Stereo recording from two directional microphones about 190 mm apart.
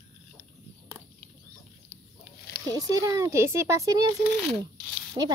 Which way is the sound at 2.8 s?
15° right (ahead or behind).